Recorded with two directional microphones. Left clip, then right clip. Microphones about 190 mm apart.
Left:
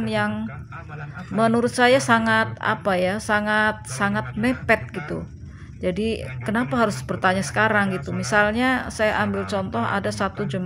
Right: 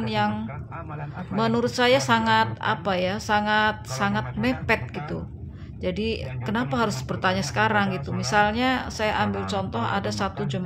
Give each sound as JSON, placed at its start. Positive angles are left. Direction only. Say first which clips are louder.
{"t": 0.0, "sound": "speech", "louder": "left 1 dB", "side_deg": 15}
{"t": 1.3, "sound": "speech", "louder": "left 4 dB", "side_deg": 15}